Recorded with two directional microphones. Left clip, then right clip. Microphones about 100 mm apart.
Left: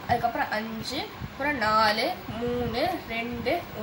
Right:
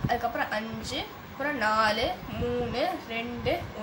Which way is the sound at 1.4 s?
15° right (ahead or behind).